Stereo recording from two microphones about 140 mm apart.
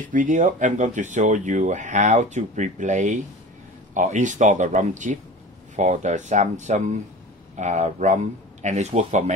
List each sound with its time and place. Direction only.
0.0 s speech: 70° right (ahead or behind); by 9.2 s 55° right (ahead or behind)